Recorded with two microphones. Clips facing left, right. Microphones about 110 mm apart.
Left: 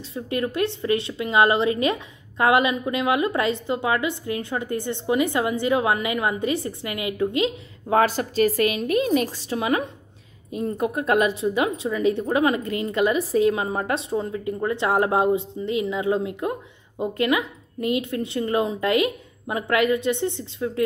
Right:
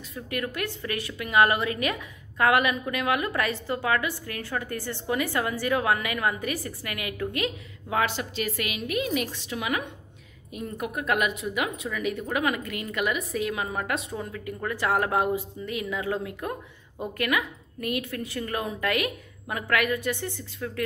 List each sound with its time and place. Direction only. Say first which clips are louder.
0.1 s a woman's voice: left 6 dB; 25° left (ahead or behind)
7.9 s a woman's voice: left 7 dB; 40° left (ahead or behind); by 20.8 s 25° left (ahead or behind)